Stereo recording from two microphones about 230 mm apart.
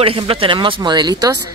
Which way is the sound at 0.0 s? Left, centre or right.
Right.